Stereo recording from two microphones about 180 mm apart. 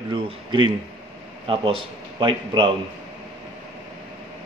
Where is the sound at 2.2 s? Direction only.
25° right (ahead or behind).